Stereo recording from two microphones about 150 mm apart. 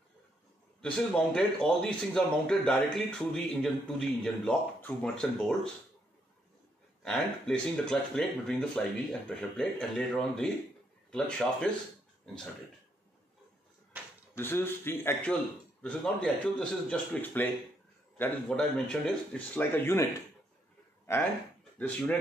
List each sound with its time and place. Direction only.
0.7 s a man's voice: 5° left (ahead or behind)
7.0 s a man's voice: 5° left (ahead or behind)
13.9 s a sound: 10° right (ahead or behind)
14.3 s a man's voice: 15° left (ahead or behind)
21.1 s speech: 20° left (ahead or behind)